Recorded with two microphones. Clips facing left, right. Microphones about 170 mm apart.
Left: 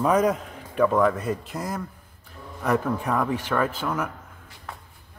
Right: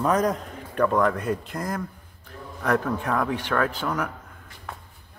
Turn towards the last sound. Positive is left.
turn(degrees=5)  # may be behind; listen again after turning